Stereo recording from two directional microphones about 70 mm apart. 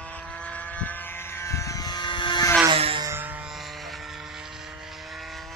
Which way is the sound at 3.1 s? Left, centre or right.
Right.